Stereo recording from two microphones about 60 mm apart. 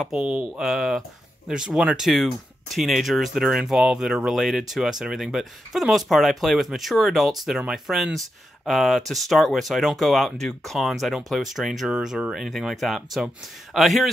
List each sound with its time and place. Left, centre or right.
0.2 s speech: centre
0.6 s speech: centre